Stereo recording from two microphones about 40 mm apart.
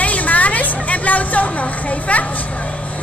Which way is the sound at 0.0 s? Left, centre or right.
Left.